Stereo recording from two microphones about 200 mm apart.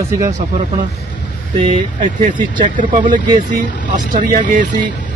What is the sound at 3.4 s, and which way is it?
Speech, 40° right (ahead or behind).